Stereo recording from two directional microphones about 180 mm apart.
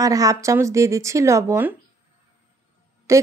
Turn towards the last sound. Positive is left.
turn(degrees=-15)  # may be behind; listen again after turning